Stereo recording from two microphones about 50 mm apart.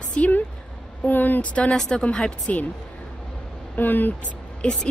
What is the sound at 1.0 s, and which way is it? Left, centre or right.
Speech, left.